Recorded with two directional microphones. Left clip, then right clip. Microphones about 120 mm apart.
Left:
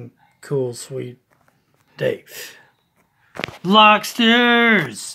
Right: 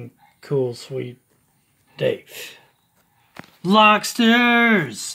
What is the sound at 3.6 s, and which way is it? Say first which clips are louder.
Speech: left 2 dB; 40° left (ahead or behind).